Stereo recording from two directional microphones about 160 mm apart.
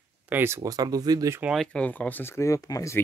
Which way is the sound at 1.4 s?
5° right (ahead or behind).